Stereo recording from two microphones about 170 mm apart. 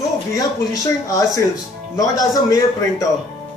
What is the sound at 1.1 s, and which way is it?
A man's voice, 20° left (ahead or behind).